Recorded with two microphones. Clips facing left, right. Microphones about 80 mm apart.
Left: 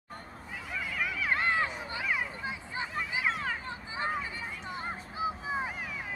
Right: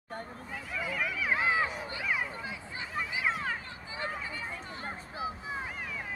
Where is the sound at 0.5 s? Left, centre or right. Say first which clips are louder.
Even; centre.